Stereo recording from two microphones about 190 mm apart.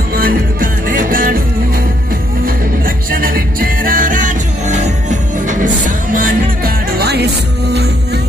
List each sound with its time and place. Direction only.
0.1 s music: 50° right (ahead or behind)
3.1 s music: 50° right (ahead or behind)